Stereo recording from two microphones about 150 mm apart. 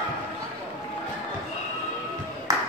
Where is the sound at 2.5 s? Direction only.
25° right (ahead or behind).